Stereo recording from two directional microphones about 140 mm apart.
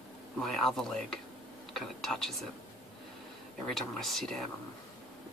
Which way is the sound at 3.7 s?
Centre (ahead or behind).